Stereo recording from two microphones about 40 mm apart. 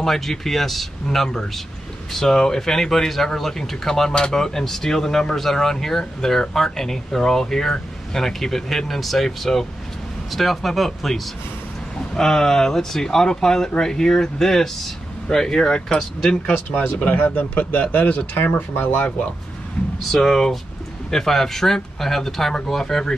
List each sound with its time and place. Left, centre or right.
0.0 s speech: centre
12.2 s speech: centre
16.5 s speech: left
17.4 s speech: left
18.9 s speech: left
20.2 s speech: centre